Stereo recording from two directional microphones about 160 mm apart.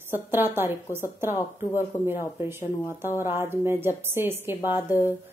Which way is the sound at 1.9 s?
15° left (ahead or behind).